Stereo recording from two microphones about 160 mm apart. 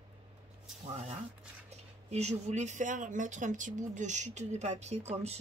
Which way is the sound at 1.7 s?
45° right (ahead or behind).